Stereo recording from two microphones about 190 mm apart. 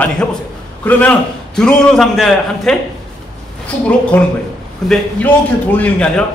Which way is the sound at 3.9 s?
10° left (ahead or behind).